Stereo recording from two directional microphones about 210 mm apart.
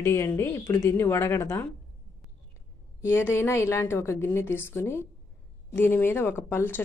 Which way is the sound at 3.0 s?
10° left (ahead or behind).